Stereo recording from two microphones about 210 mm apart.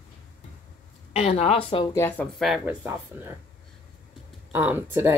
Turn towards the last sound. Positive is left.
turn(degrees=-10)  # may be behind; listen again after turning